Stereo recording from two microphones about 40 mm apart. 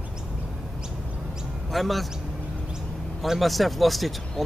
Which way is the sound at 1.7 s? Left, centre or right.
Centre.